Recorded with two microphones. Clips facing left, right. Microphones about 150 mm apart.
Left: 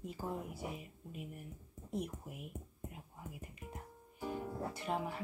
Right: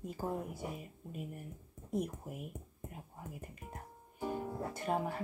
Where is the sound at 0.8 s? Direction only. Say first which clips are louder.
Right 3 dB; 45° right (ahead or behind).